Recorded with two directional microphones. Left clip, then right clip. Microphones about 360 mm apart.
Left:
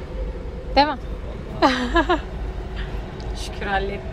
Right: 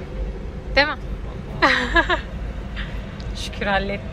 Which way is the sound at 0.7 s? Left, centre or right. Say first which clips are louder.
Left 1 dB; centre.